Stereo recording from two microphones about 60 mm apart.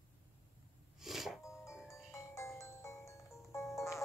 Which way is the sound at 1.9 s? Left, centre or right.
Left.